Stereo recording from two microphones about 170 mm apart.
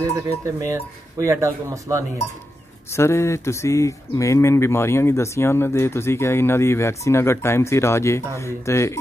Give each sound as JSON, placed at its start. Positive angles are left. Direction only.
{"t": 0.6, "sound": "speech", "side_deg": -20}
{"t": 2.9, "sound": "speech", "side_deg": 15}